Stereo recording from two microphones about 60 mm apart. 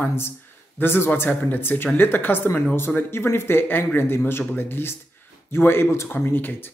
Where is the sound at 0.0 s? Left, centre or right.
Left.